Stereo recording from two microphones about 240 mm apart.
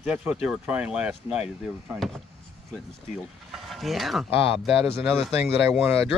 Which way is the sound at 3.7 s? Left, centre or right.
Centre.